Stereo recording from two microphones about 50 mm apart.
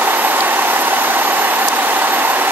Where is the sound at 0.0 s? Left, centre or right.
Right.